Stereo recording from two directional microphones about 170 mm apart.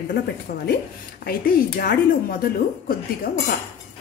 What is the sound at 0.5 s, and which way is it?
A woman's voice, 65° left (ahead or behind).